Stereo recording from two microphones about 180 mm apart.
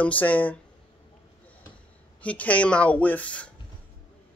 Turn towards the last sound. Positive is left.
turn(degrees=5)  # may be behind; listen again after turning